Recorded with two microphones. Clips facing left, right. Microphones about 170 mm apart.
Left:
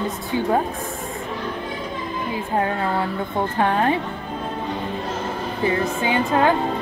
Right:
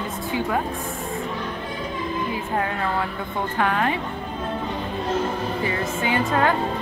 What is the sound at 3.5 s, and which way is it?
Speech, 30° left (ahead or behind).